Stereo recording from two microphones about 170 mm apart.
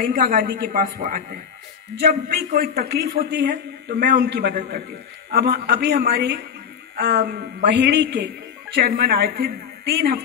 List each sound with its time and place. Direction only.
0.0 s a man's voice: 55° right (ahead or behind); by 8.3 s 75° right (ahead or behind)
8.9 s speech: 60° right (ahead or behind)